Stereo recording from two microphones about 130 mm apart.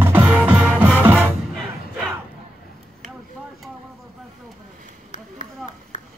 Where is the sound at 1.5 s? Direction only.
5° left (ahead or behind).